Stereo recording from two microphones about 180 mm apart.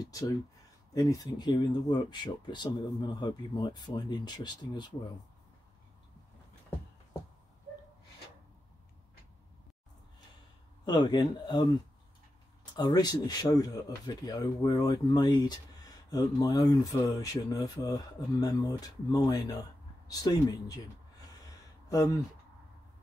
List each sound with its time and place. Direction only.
0.0 s speech: 20° left (ahead or behind)
10.9 s speech: 25° left (ahead or behind)
12.7 s speech: 20° left (ahead or behind)
21.8 s speech: 20° left (ahead or behind)